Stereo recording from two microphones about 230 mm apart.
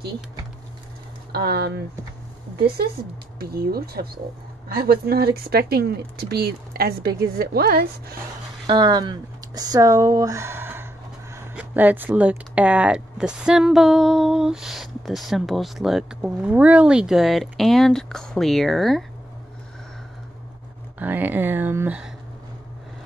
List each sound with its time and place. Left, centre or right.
1.3 s speech: right
3.3 s speech: right
8.6 s speech: centre
21.0 s speech: centre